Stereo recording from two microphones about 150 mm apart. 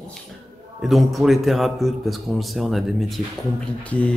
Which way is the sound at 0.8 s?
Centre (ahead or behind).